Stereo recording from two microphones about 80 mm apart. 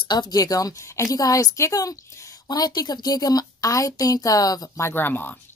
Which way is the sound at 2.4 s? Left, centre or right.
Left.